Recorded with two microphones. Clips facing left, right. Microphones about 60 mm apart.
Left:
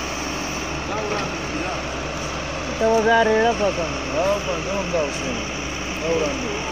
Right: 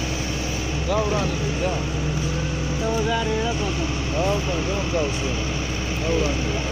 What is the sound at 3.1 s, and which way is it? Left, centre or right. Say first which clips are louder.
Vehicle: left 7 dB; left.